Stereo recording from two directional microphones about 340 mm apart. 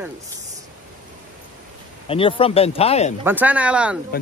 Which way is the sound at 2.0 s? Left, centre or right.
Centre.